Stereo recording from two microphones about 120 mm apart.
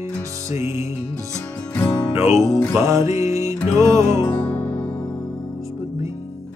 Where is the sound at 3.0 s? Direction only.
70° left (ahead or behind).